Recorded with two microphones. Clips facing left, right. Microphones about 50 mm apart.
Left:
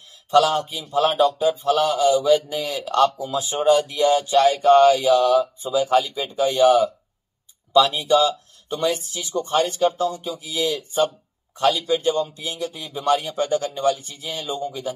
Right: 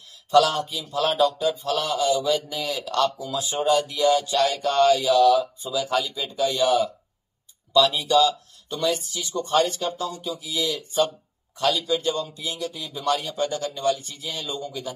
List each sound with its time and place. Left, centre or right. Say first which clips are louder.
0.3 s speech: left 1 dB; left
1.5 s a sound: left 6 dB; centre
2.0 s speech: left 5 dB; left
7.9 s speech: left 1 dB; left